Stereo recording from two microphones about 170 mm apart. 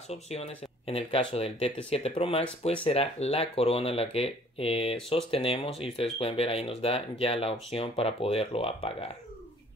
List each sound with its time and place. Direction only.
0.1 s speech: 35° left (ahead or behind)